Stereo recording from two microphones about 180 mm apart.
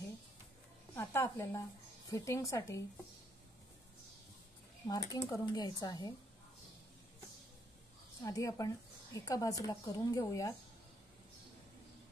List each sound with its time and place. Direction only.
0.9 s a woman's voice: 15° left (ahead or behind)
4.8 s a woman's voice: 20° left (ahead or behind)
8.2 s a woman's voice: 20° left (ahead or behind)